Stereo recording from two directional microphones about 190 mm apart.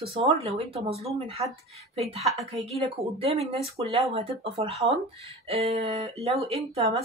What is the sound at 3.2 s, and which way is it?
Speech, 30° right (ahead or behind).